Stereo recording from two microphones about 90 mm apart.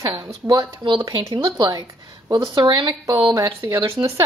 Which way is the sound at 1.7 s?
40° right (ahead or behind).